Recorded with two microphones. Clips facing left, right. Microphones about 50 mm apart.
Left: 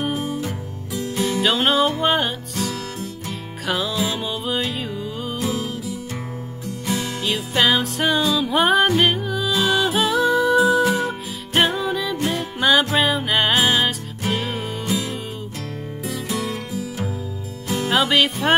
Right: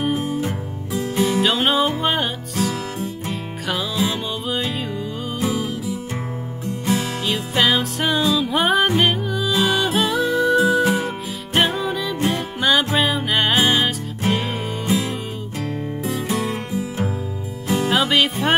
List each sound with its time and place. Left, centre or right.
0.0 s music: centre
0.4 s music: right
1.1 s music: centre
16.1 s music: right
17.6 s music: centre